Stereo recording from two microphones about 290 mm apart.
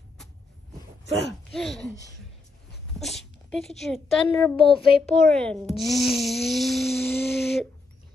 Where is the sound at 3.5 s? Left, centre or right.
Centre.